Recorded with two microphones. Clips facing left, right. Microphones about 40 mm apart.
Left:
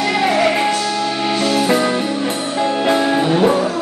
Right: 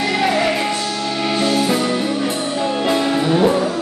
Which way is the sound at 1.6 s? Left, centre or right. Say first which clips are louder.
Left 2 dB; left.